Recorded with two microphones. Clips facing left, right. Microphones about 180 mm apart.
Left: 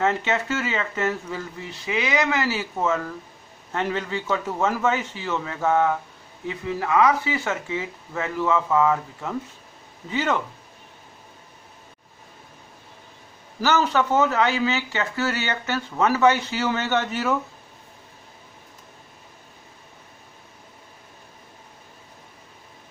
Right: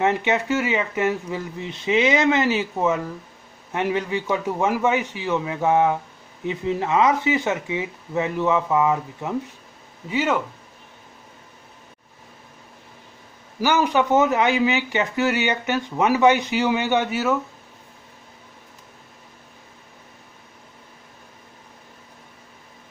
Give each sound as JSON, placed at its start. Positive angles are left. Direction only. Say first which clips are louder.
{"t": 0.0, "sound": "speech", "louder": "right 2 dB", "side_deg": -15}
{"t": 13.6, "sound": "speech", "louder": "right 2 dB", "side_deg": -10}